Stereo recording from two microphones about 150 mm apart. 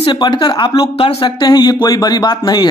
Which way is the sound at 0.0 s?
30° left (ahead or behind).